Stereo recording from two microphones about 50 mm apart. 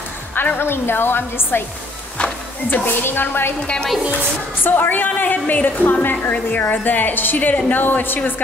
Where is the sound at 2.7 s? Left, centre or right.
Left.